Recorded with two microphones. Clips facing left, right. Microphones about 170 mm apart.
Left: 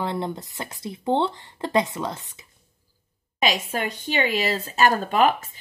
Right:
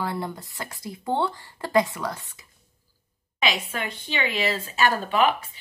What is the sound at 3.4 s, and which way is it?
Speech, 40° left (ahead or behind).